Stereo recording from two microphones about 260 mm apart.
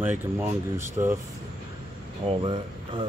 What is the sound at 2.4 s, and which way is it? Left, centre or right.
Speech, centre.